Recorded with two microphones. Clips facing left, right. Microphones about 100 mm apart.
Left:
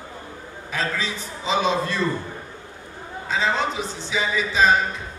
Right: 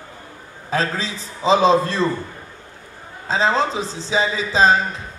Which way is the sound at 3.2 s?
35° right (ahead or behind).